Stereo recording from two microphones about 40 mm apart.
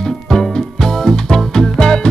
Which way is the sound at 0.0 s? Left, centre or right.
Centre.